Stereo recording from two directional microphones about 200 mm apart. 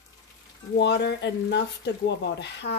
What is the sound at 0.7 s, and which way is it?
Speech, 60° left (ahead or behind).